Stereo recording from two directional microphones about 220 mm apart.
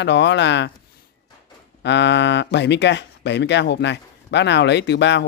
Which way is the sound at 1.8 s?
55° left (ahead or behind).